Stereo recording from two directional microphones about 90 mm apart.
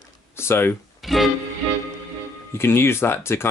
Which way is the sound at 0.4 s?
25° left (ahead or behind).